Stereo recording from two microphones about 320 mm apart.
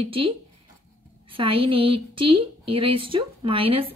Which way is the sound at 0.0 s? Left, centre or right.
Centre.